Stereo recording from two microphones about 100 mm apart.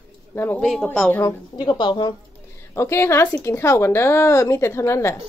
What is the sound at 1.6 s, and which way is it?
Speech, 45° left (ahead or behind).